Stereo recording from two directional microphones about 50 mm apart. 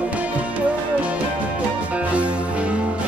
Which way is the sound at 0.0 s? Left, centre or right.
Right.